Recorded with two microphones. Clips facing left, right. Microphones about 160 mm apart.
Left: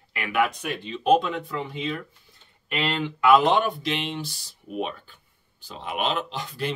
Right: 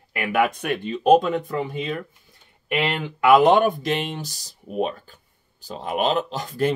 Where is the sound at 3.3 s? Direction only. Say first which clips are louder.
Right 5 dB; 50° right (ahead or behind).